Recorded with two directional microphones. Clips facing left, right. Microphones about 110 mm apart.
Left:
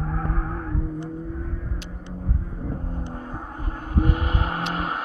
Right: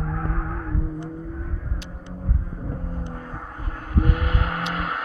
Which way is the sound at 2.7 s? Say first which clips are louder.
Even; 20° left (ahead or behind).